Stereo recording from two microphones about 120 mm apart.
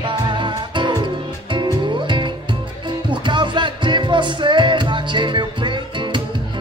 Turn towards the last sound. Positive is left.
turn(degrees=-40)  # may be behind; listen again after turning